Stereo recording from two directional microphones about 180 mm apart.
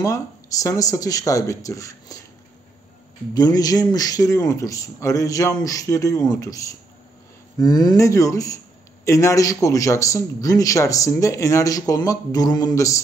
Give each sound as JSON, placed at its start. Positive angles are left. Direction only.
{"t": 0.0, "sound": "a man's voice", "side_deg": 20}
{"t": 3.3, "sound": "a man's voice", "side_deg": 20}